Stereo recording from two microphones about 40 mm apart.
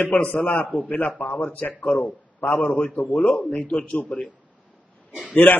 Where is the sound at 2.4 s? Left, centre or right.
Left.